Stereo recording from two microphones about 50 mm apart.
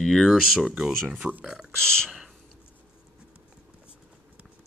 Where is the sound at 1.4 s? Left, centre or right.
Centre.